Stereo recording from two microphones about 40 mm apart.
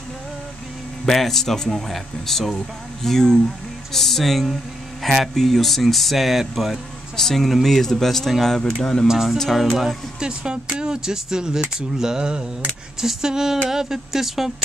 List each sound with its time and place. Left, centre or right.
1.0 s speech: centre
9.0 s speech: centre
9.4 s speech: centre
10.2 s a sound: right
10.8 s speech: centre
12.0 s a sound: centre
13.0 s speech: centre